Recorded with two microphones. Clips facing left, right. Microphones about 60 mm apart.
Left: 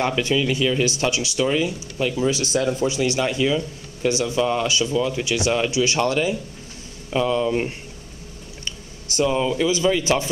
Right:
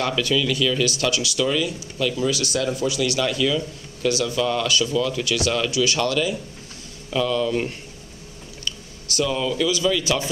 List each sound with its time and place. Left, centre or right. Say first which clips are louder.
0.0 s speech: left 1 dB; left